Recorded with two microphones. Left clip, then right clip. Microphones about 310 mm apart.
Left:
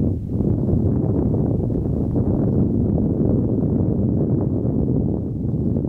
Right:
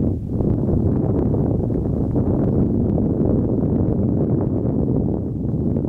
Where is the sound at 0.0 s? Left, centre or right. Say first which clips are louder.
Right 1 dB; centre.